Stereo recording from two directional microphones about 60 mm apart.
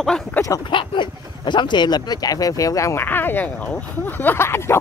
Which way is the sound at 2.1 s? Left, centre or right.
Left.